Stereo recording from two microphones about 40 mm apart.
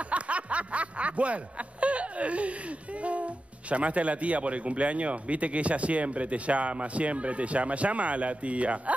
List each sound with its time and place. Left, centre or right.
0.1 s snicker: right
3.0 s a man's voice: right